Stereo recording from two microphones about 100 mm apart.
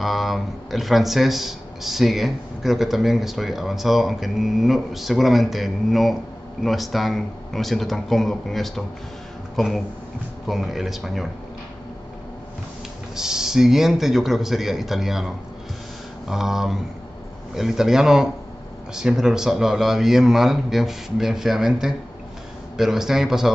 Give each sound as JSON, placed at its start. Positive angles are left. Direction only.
{"t": 0.0, "sound": "speech", "side_deg": 0}
{"t": 13.1, "sound": "speech", "side_deg": -5}